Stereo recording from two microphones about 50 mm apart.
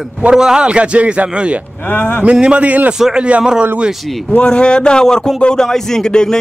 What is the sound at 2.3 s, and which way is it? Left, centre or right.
Speech, right.